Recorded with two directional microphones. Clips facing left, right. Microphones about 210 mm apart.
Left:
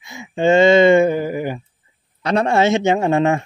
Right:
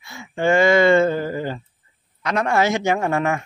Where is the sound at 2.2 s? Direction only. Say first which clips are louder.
Left 4 dB; 30° left (ahead or behind).